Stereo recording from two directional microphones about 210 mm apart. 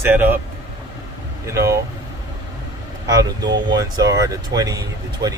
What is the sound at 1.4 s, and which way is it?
Speech, 15° right (ahead or behind).